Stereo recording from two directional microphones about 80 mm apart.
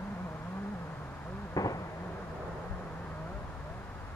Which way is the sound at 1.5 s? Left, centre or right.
Left.